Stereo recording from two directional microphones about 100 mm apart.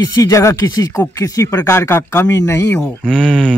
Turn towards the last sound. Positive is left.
turn(degrees=10)  # may be behind; listen again after turning